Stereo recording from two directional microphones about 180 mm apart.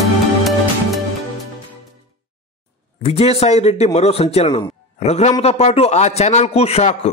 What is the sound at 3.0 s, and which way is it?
A man's voice, 35° left (ahead or behind).